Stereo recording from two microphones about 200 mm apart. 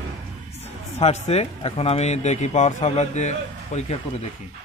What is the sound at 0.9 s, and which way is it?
Speech, 30° left (ahead or behind).